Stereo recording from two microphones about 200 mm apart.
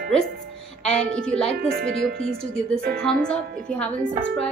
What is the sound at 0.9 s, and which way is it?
Speech, 5° left (ahead or behind).